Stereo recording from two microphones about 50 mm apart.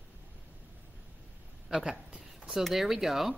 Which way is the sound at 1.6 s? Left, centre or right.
Centre.